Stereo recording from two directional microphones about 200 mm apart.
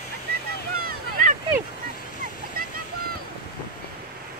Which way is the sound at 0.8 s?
40° right (ahead or behind).